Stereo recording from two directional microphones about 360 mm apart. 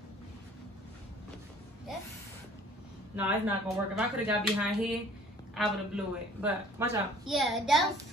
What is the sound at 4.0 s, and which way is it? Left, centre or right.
A woman's voice, centre.